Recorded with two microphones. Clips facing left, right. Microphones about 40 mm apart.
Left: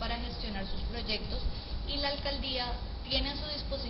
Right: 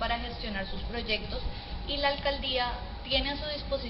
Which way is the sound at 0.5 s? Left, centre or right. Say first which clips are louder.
Right 4 dB; right.